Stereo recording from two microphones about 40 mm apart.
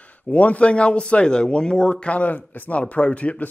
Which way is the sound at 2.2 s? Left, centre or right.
Left.